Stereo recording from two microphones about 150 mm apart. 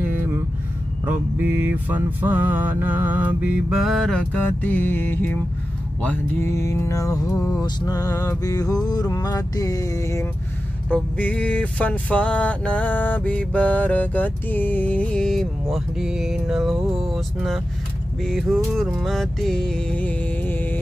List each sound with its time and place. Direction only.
0.0 s vehicle: 15° right (ahead or behind)
1.0 s mantra: 10° right (ahead or behind); by 5.4 s 10° left (ahead or behind)
6.0 s music: 15° left (ahead or behind)
10.9 s music: 10° left (ahead or behind)
15.7 s a sound: 5° right (ahead or behind)
18.9 s music: centre (ahead or behind)